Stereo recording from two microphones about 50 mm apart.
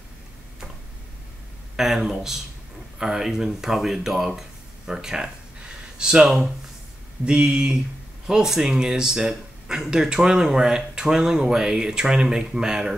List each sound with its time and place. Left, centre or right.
1.8 s speech: centre
4.4 s a sound: centre
6.2 s speech: centre